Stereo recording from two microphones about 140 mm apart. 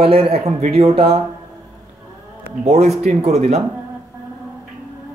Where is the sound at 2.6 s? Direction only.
55° right (ahead or behind).